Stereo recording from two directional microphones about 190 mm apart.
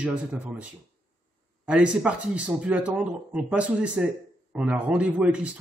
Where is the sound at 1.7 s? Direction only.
5° right (ahead or behind).